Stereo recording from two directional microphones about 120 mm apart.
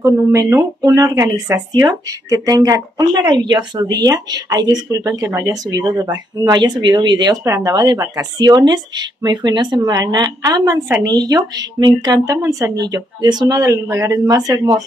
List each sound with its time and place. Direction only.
0.0 s speech: 25° right (ahead or behind)